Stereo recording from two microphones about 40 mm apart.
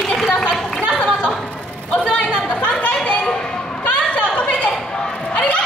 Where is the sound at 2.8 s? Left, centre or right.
Left.